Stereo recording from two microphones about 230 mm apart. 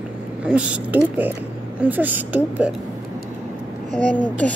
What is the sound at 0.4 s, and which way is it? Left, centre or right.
A woman's voice, centre.